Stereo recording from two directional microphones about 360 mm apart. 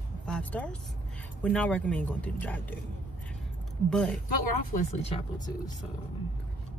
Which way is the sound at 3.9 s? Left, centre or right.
Centre.